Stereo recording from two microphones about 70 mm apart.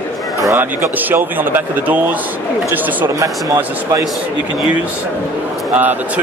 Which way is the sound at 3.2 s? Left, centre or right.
Right.